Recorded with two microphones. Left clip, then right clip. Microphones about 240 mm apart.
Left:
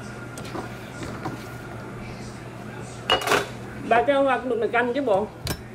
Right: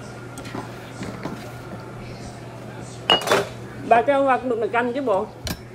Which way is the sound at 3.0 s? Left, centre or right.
Right.